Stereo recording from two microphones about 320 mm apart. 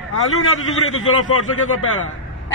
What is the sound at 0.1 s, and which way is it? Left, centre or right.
Speech, left.